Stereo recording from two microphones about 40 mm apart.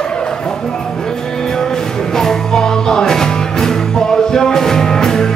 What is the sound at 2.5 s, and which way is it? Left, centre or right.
Music, centre.